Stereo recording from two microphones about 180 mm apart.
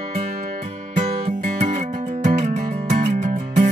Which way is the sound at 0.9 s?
40° right (ahead or behind).